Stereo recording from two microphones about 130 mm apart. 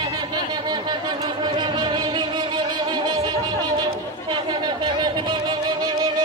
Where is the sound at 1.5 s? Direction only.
35° right (ahead or behind).